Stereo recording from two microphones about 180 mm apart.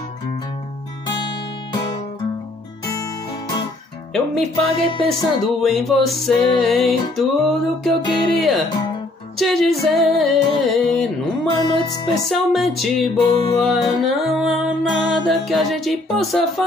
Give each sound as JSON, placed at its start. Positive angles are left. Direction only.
{"t": 1.0, "sound": "music", "side_deg": 25}
{"t": 4.1, "sound": "music", "side_deg": 0}
{"t": 12.1, "sound": "music", "side_deg": 0}